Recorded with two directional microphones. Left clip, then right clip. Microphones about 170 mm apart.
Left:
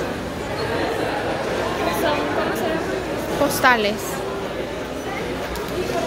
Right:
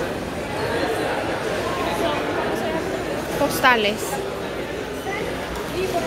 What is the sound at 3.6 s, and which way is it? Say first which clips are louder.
Speech: even; 5° left (ahead or behind).